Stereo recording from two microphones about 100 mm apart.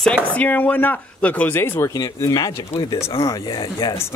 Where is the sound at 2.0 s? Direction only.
35° left (ahead or behind).